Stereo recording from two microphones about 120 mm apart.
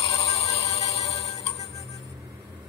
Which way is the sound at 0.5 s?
60° left (ahead or behind).